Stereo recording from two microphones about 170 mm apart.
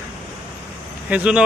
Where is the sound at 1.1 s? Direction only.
10° right (ahead or behind).